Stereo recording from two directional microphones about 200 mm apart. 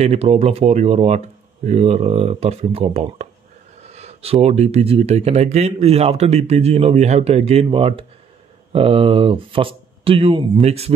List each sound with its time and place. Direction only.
0.0 s speech: 30° right (ahead or behind)